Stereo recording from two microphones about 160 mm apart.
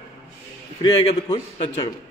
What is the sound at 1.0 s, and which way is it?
Speech, 40° left (ahead or behind).